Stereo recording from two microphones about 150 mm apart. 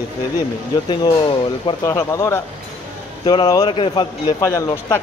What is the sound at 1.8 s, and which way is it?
Speech, 20° left (ahead or behind).